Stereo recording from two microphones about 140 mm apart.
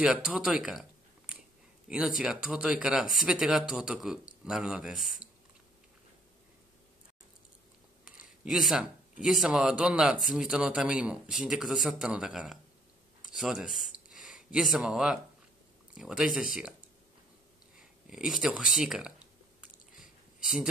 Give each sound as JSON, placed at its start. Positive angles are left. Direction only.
{"t": 0.0, "sound": "speech", "side_deg": -5}
{"t": 8.0, "sound": "speech", "side_deg": 0}
{"t": 13.2, "sound": "a sound", "side_deg": -5}
{"t": 14.2, "sound": "speech", "side_deg": 0}
{"t": 18.1, "sound": "speech", "side_deg": -5}